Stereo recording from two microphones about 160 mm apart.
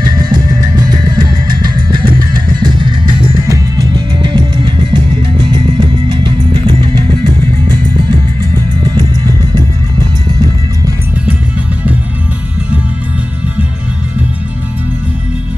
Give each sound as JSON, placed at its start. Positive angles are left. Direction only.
{"t": 0.2, "sound": "music", "side_deg": -25}